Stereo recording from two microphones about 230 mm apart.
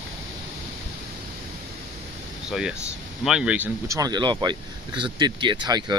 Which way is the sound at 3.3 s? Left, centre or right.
Centre.